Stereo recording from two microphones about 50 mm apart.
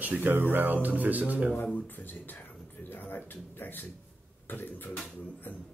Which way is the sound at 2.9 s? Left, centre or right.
Left.